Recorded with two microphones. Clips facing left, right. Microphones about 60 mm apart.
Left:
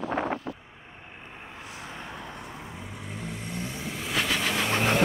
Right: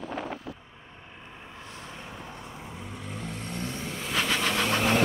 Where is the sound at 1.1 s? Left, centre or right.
Left.